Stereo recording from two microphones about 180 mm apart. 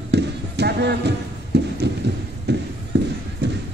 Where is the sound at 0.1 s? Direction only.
65° right (ahead or behind).